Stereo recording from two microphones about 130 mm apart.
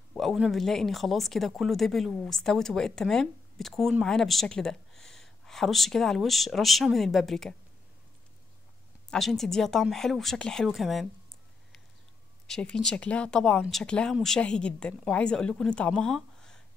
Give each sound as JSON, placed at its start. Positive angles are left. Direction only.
{"t": 0.1, "sound": "speech", "side_deg": 0}
{"t": 9.1, "sound": "speech", "side_deg": 0}
{"t": 12.4, "sound": "speech", "side_deg": 5}